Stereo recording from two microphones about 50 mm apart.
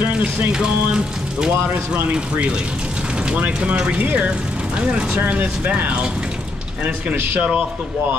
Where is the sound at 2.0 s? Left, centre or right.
Right.